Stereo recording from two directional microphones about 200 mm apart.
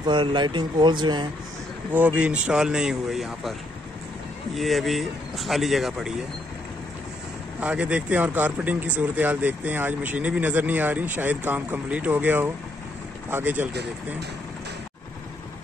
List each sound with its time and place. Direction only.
0.0 s speech: 25° right (ahead or behind)
2.1 s speech: 5° right (ahead or behind)
4.6 s speech: centre (ahead or behind)
7.6 s speech: 5° right (ahead or behind)